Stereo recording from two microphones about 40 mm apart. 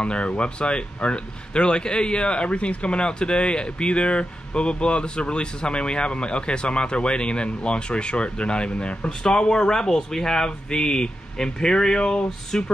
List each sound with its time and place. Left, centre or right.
0.0 s speech: left